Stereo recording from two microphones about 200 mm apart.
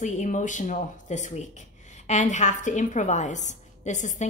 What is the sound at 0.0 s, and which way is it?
A woman's voice, 40° left (ahead or behind).